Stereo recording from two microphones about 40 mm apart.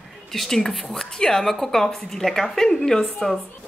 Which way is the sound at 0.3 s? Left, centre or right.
Centre.